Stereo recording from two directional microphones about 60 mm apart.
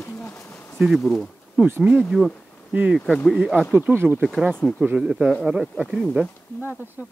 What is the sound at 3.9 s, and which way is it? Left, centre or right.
Speech, right.